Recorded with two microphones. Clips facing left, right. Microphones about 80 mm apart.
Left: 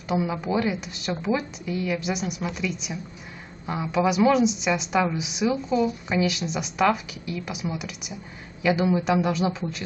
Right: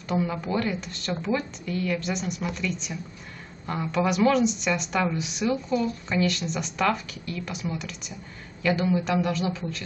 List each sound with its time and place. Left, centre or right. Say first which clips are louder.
0.1 s a woman's voice: left 2 dB; centre